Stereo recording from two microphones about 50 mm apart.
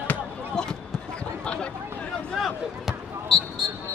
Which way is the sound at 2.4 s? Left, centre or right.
Centre.